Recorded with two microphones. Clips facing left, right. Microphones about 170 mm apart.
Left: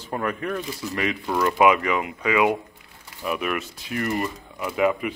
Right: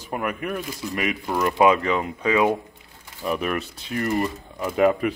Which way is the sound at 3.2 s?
35° right (ahead or behind).